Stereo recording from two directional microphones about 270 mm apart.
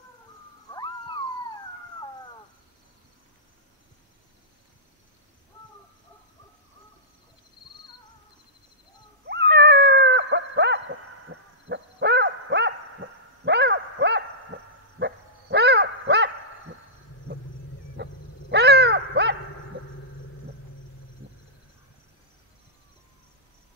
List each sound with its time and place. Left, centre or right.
0.7 s cat: centre
9.3 s dog: right
18.0 s wild animals: right
18.5 s a sound: right